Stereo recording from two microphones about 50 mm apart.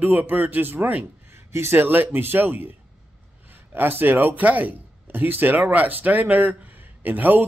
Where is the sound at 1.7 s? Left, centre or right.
Right.